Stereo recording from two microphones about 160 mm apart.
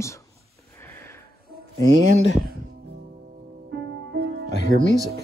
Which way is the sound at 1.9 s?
50° right (ahead or behind).